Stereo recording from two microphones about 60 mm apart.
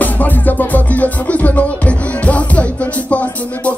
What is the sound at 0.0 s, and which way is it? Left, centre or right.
Music, left.